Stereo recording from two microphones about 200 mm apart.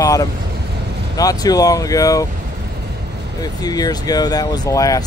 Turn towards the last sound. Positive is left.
turn(degrees=15)  # may be behind; listen again after turning